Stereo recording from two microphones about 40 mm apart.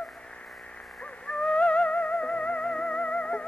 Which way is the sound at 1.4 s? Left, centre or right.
Left.